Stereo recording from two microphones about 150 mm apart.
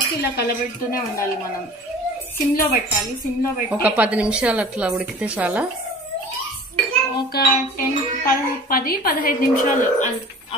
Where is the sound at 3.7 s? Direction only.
10° right (ahead or behind).